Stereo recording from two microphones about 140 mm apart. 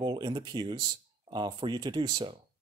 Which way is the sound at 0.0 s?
35° right (ahead or behind).